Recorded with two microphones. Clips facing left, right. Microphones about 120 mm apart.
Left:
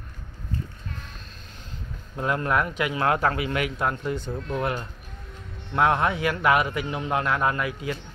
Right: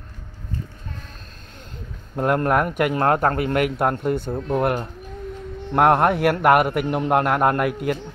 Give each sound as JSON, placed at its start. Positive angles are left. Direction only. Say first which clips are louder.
{"t": 2.1, "sound": "a man's voice", "louder": "right 5 dB", "side_deg": -55}